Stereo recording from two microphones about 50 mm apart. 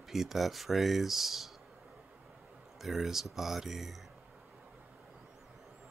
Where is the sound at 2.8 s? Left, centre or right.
Centre.